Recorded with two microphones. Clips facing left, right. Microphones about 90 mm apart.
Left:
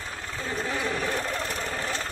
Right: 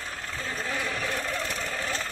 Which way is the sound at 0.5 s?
5° left (ahead or behind).